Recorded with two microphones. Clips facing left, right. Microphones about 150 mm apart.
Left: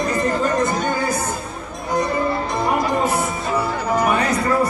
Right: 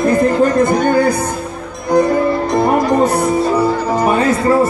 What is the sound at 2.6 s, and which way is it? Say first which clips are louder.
Music: right 6 dB; 40° right (ahead or behind).